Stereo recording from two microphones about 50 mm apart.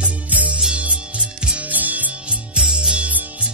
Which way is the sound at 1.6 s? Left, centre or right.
Right.